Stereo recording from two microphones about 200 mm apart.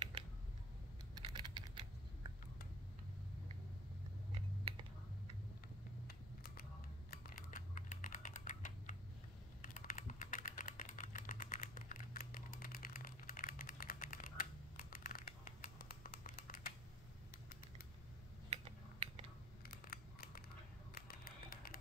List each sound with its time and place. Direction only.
1.2 s typing: 25° right (ahead or behind)
6.0 s a sound: 45° left (ahead or behind)
7.1 s typing: 45° left (ahead or behind)
19.6 s scissors: 50° left (ahead or behind)
20.9 s music: 45° left (ahead or behind)